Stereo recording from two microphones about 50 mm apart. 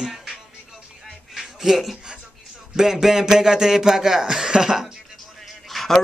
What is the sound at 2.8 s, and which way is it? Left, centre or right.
Speech, centre.